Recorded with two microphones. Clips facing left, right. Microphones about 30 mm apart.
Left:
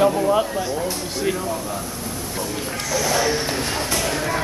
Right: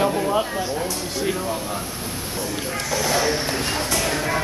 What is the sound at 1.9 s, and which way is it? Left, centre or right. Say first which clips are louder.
Vehicle: left 1 dB; right.